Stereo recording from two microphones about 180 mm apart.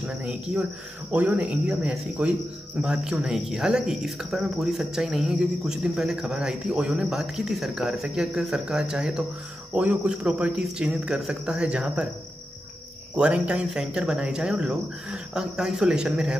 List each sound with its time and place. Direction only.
0.0 s speech: 5° right (ahead or behind)
13.1 s speech: 5° right (ahead or behind)